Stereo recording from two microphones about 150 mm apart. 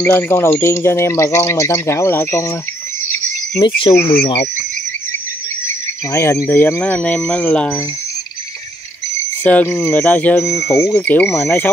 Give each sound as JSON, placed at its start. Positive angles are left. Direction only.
{"t": 0.0, "sound": "speech", "side_deg": 10}
{"t": 3.5, "sound": "speech", "side_deg": 35}
{"t": 6.1, "sound": "speech", "side_deg": 20}
{"t": 9.1, "sound": "speech", "side_deg": 10}